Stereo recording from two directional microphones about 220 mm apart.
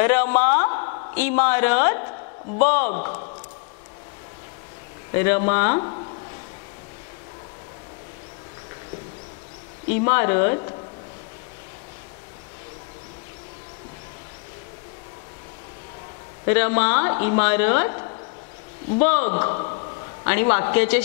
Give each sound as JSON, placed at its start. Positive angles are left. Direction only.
{"t": 0.0, "sound": "a man's voice", "side_deg": 15}
{"t": 2.9, "sound": "a man's voice", "side_deg": 35}
{"t": 5.1, "sound": "speech", "side_deg": 15}
{"t": 5.8, "sound": "a man's voice", "side_deg": 25}
{"t": 9.9, "sound": "speech", "side_deg": 15}
{"t": 16.4, "sound": "speech", "side_deg": 15}
{"t": 19.4, "sound": "a man's voice", "side_deg": 25}
{"t": 20.2, "sound": "speech", "side_deg": 15}